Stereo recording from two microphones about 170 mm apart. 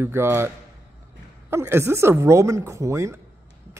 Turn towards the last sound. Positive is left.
turn(degrees=-15)  # may be behind; listen again after turning